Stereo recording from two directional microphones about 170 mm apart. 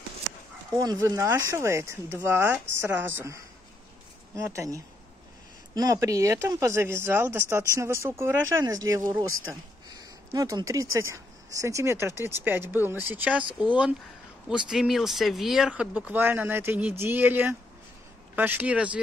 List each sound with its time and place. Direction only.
0.7 s speech: 20° right (ahead or behind)
4.4 s speech: 15° right (ahead or behind)
14.5 s speech: 5° right (ahead or behind)